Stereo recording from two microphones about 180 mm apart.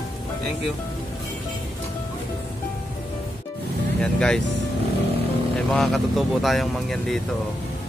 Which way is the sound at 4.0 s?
5° left (ahead or behind).